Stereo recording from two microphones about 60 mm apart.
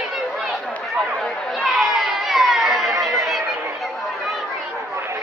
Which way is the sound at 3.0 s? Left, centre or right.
Centre.